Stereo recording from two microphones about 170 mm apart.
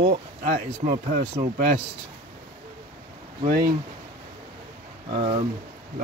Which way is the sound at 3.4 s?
55° right (ahead or behind).